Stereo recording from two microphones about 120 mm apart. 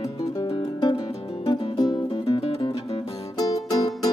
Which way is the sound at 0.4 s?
35° left (ahead or behind).